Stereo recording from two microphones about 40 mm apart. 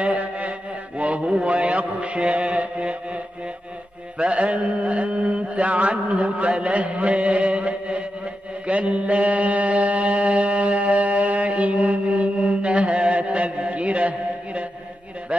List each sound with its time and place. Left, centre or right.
0.0 s mantra: right
4.2 s mantra: right